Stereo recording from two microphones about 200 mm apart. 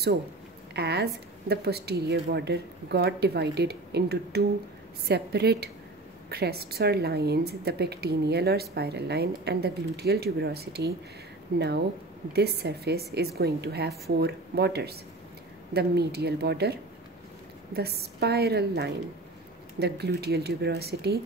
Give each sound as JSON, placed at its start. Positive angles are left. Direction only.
{"t": 0.7, "sound": "a woman's voice", "side_deg": -55}